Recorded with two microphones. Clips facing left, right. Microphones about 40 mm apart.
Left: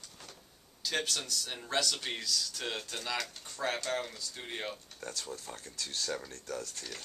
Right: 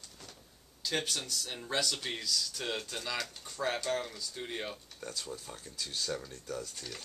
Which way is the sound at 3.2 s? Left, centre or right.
Centre.